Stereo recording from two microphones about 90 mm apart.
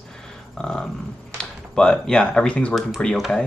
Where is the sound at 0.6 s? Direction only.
5° left (ahead or behind).